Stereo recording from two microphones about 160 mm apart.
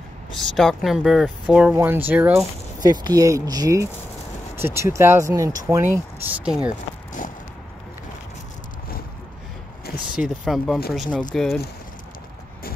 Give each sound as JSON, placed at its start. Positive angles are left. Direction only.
{"t": 0.3, "sound": "speech", "side_deg": 0}
{"t": 2.8, "sound": "speech", "side_deg": -25}
{"t": 6.4, "sound": "speech", "side_deg": -5}
{"t": 10.1, "sound": "speech", "side_deg": -5}